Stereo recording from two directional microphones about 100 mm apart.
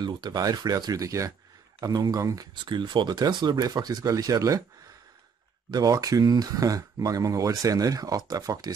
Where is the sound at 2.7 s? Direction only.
50° right (ahead or behind).